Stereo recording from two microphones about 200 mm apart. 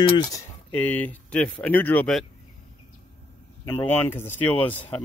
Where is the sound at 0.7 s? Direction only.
10° left (ahead or behind).